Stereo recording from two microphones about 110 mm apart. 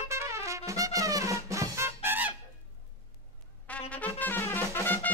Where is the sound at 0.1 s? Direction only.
25° right (ahead or behind).